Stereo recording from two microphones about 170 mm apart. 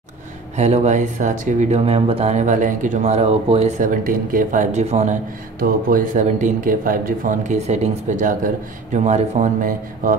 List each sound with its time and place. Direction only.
0.6 s speech: 40° right (ahead or behind)
5.6 s speech: 55° right (ahead or behind)